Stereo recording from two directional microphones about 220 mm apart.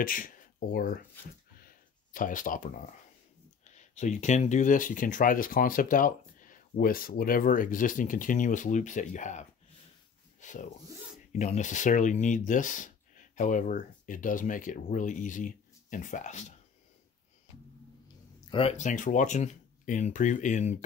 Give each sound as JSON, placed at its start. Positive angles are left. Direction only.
{"t": 0.0, "sound": "speech", "side_deg": 40}
{"t": 1.6, "sound": "a sound", "side_deg": 40}
{"t": 3.6, "sound": "speech", "side_deg": 35}
{"t": 18.5, "sound": "speech", "side_deg": 25}